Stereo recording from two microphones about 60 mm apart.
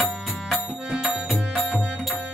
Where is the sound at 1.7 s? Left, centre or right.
Centre.